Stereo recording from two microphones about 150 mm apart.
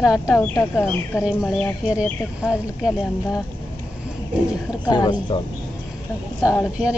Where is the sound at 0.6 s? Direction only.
20° left (ahead or behind).